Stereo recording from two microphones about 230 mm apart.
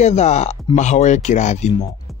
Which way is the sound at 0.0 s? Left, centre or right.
Left.